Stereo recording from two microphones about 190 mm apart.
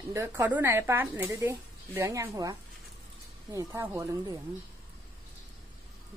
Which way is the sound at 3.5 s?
15° right (ahead or behind).